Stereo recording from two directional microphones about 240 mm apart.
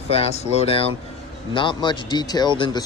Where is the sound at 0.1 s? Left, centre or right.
Left.